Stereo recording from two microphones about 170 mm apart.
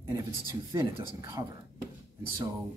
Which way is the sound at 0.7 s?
20° right (ahead or behind).